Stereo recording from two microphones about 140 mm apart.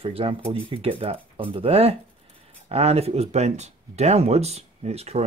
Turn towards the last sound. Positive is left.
turn(degrees=-50)  # may be behind; listen again after turning